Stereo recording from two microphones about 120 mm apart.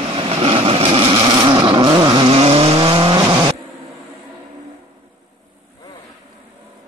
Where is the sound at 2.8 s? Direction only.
40° right (ahead or behind).